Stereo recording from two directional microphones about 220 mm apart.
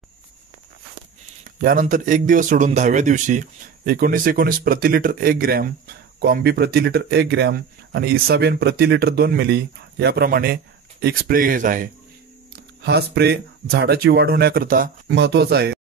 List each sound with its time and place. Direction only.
1.6 s a man's voice: 40° right (ahead or behind)
12.8 s a man's voice: 50° right (ahead or behind)